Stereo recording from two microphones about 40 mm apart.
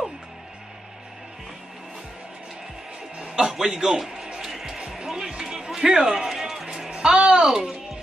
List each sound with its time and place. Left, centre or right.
3.2 s a man's voice: centre
4.0 s music: centre
5.9 s a man's voice: centre
6.2 s music: centre
6.9 s a sound: right
7.4 s a man's voice: centre